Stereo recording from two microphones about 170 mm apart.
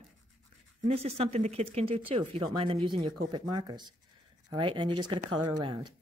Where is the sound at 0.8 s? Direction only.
35° right (ahead or behind).